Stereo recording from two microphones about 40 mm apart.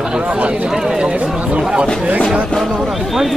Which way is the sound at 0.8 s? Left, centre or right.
Centre.